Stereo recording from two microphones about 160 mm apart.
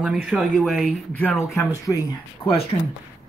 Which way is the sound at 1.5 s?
20° left (ahead or behind).